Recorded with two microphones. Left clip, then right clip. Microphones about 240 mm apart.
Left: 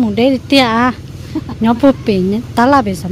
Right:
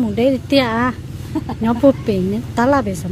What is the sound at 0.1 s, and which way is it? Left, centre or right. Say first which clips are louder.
A woman's voice: left 2 dB; centre.